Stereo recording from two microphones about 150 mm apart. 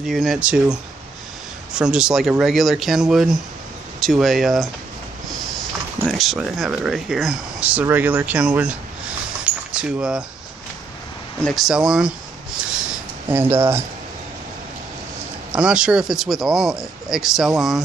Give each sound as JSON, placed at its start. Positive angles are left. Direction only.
{"t": 0.0, "sound": "speech", "side_deg": 0}
{"t": 6.0, "sound": "speech", "side_deg": 0}
{"t": 9.4, "sound": "a sound", "side_deg": -5}
{"t": 11.4, "sound": "speech", "side_deg": 0}
{"t": 12.5, "sound": "a sound", "side_deg": -5}
{"t": 13.3, "sound": "speech", "side_deg": -15}
{"t": 15.5, "sound": "speech", "side_deg": -5}